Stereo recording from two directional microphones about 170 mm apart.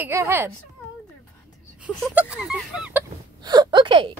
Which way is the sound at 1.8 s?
5° right (ahead or behind).